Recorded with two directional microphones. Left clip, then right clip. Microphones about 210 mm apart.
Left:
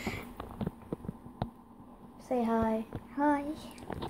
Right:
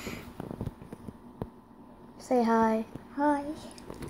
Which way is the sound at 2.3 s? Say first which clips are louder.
Right 5 dB; 15° right (ahead or behind).